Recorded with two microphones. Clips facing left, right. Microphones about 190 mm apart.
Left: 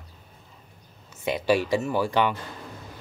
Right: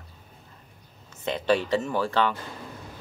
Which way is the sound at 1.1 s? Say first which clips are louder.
Left 1 dB; 10° left (ahead or behind).